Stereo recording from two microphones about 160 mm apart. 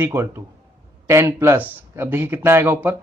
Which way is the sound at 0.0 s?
15° right (ahead or behind).